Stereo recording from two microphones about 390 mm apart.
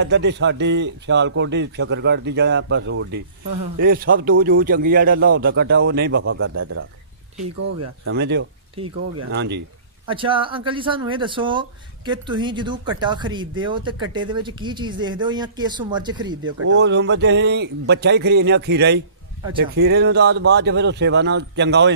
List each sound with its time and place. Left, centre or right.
0.0 s a man's voice: right
8.1 s a man's voice: right
10.0 s speech: centre
16.6 s a man's voice: right